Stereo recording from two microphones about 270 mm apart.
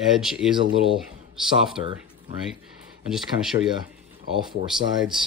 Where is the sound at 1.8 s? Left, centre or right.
Centre.